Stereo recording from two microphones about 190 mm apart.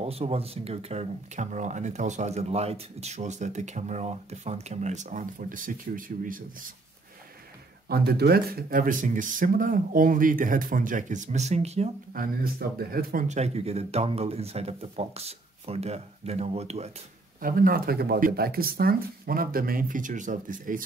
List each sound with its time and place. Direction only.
0.0 s speech: 30° right (ahead or behind)
7.9 s speech: 55° right (ahead or behind); by 11.9 s 35° right (ahead or behind)
12.1 s speech: 50° right (ahead or behind); by 16.9 s 35° right (ahead or behind)
17.4 s speech: 50° right (ahead or behind)